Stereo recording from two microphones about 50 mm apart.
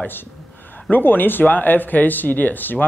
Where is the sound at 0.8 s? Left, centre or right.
Left.